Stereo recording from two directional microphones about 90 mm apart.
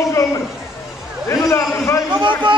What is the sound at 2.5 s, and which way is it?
Speech, 70° right (ahead or behind).